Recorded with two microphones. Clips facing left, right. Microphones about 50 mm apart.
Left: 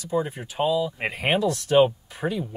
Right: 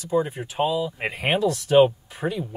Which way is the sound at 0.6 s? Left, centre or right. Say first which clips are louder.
Left 1 dB; centre.